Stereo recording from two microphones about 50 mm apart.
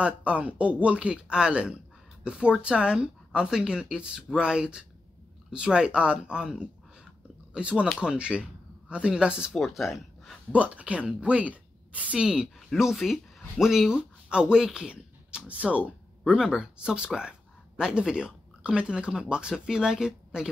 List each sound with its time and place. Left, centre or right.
0.0 s speech: right
9.5 s speech: centre
10.5 s a woman's voice: right
12.2 s speech: centre
12.9 s speech: centre
13.9 s speech: centre
16.3 s speech: centre